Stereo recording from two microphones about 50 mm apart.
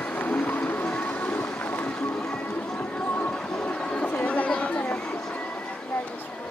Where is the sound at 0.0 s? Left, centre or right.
Left.